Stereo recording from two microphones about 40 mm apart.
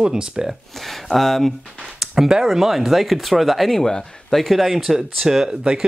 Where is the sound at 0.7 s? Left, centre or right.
Centre.